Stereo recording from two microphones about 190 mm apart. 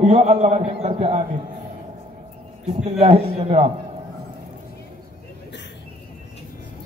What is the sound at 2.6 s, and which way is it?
A man's voice, 30° right (ahead or behind).